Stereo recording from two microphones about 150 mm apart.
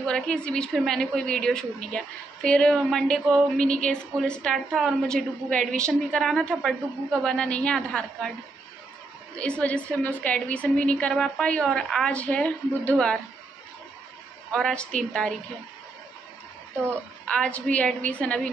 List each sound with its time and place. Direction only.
0.0 s a woman's voice: 5° left (ahead or behind)
9.4 s a woman's voice: 10° left (ahead or behind)
14.5 s a woman's voice: 5° left (ahead or behind)
17.3 s a woman's voice: 10° left (ahead or behind)